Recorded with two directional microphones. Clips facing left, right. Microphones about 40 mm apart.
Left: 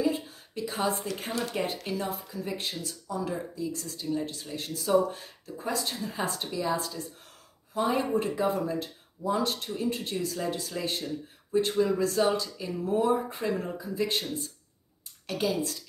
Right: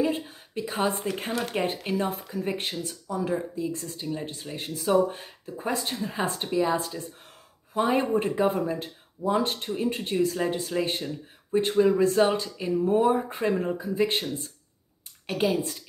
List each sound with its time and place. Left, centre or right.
0.0 s a sound: right
1.5 s speech: right
15.2 s a woman's voice: right